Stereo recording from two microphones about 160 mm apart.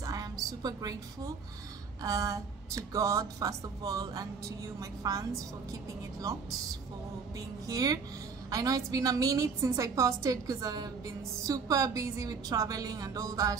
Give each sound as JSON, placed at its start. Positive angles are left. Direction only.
{"t": 0.0, "sound": "a woman's voice", "side_deg": -20}